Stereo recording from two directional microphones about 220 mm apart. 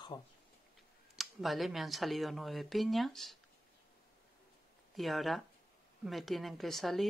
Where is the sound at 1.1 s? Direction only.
Centre (ahead or behind).